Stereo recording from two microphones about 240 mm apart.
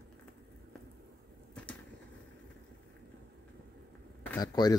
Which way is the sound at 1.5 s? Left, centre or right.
Centre.